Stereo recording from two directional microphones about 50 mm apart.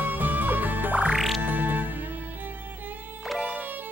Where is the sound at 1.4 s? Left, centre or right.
Right.